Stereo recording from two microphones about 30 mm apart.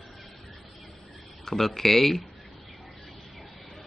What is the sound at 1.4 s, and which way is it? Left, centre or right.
Speech, centre.